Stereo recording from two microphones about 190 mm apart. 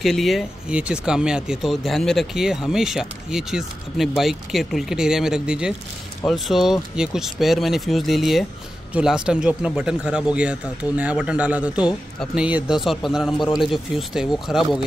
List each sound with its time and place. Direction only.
0.0 s speech: centre (ahead or behind)